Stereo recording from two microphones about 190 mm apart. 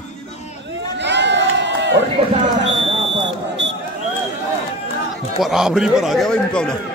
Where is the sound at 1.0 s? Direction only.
70° right (ahead or behind).